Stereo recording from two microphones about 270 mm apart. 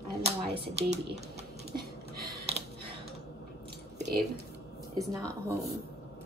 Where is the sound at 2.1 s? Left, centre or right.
Right.